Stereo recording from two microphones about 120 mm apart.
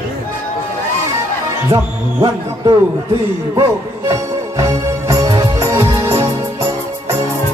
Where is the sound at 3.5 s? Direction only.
30° right (ahead or behind).